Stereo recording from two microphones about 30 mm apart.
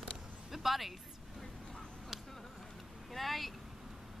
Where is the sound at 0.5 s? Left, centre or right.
Centre.